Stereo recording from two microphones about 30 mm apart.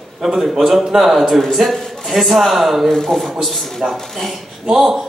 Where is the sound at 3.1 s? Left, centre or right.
Left.